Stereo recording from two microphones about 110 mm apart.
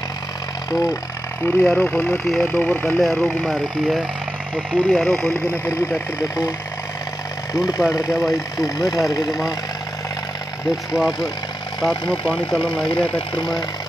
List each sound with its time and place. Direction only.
0.7 s speech: 30° left (ahead or behind)
1.4 s speech: 20° left (ahead or behind)
3.0 s speech: 5° left (ahead or behind)
5.3 s speech: 25° left (ahead or behind)
7.5 s speech: 30° left (ahead or behind)
11.0 s speech: centre (ahead or behind)
12.5 s speech: 50° left (ahead or behind)
13.4 s speech: 35° left (ahead or behind)